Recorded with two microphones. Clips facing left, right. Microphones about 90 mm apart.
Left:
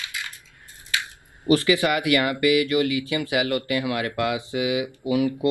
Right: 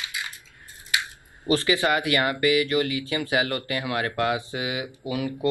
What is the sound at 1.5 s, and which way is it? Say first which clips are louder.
Speech: left 3 dB; 30° right (ahead or behind).